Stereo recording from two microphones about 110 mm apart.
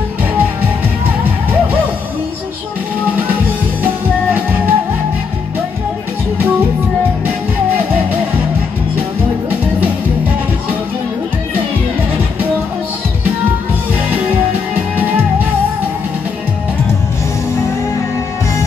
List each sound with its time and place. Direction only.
3.8 s music: 15° right (ahead or behind)